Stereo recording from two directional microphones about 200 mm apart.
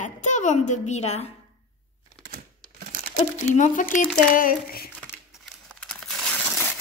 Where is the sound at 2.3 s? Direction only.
45° right (ahead or behind).